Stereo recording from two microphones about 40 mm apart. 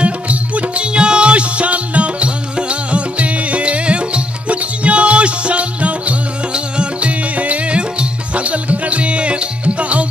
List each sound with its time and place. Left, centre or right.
0.0 s music: right